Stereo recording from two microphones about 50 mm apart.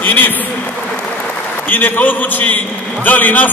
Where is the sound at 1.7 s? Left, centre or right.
Left.